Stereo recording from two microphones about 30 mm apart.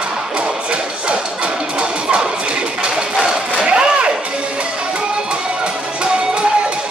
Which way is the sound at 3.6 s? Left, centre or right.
Right.